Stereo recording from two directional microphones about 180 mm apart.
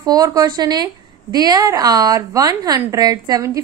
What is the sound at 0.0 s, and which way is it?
A woman's voice, 20° right (ahead or behind).